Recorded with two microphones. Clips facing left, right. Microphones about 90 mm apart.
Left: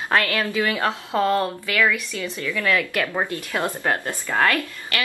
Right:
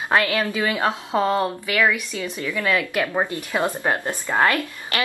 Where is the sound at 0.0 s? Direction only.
15° right (ahead or behind).